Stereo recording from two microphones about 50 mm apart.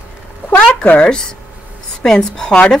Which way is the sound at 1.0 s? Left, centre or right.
Centre.